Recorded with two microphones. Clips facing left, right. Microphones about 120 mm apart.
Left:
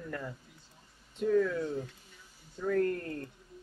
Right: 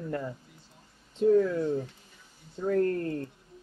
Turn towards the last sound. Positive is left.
turn(degrees=-30)  # may be behind; listen again after turning